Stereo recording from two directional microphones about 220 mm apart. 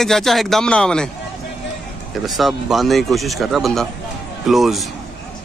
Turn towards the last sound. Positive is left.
turn(degrees=0)  # may be behind; listen again after turning